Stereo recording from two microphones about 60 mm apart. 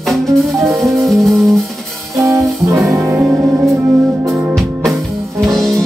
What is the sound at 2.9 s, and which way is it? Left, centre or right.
Music, right.